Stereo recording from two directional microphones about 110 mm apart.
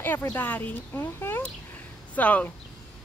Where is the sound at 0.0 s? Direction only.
20° left (ahead or behind).